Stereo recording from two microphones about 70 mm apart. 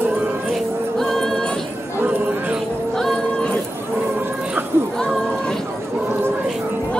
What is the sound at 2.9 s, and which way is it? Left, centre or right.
Music, centre.